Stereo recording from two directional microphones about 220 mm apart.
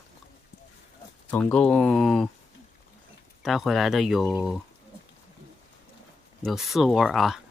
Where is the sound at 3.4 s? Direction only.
Centre (ahead or behind).